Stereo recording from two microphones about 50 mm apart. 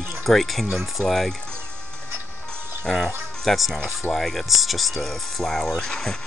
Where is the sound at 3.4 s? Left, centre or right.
Centre.